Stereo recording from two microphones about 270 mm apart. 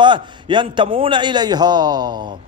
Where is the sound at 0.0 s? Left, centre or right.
Centre.